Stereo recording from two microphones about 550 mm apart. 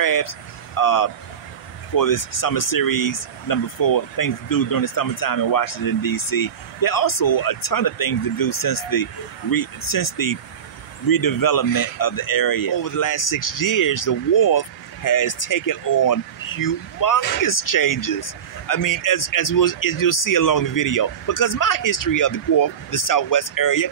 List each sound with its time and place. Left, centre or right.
0.0 s vehicle: left
0.7 s speech: left